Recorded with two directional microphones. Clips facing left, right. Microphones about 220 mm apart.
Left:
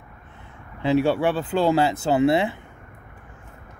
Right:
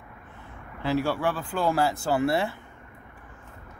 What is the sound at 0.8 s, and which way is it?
Speech, 20° left (ahead or behind).